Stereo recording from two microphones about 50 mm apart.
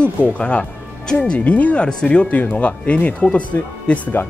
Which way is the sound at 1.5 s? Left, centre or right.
Left.